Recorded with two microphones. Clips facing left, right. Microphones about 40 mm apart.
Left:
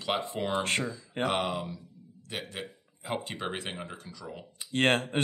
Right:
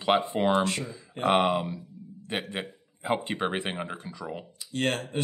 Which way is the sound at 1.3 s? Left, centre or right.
Right.